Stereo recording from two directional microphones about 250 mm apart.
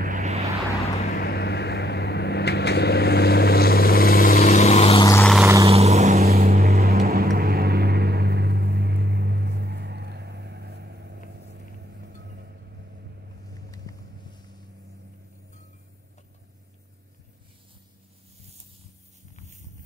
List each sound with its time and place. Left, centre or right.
0.0 s vehicle: right
1.1 s vehicle: left; by 5.2 s centre
5.4 s vehicle: centre
5.7 s vehicle: right